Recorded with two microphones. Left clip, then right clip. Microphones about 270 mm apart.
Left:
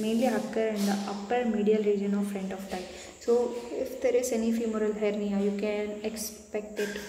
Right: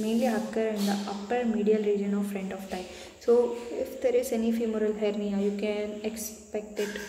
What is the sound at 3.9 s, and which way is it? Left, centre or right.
A woman's voice, centre.